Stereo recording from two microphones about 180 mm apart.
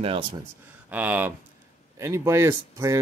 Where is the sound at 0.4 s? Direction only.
10° right (ahead or behind).